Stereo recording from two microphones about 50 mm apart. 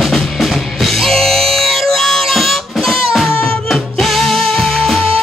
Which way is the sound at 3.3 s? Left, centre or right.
Left.